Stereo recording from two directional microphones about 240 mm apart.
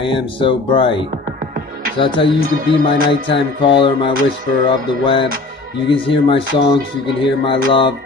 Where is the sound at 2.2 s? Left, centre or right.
Left.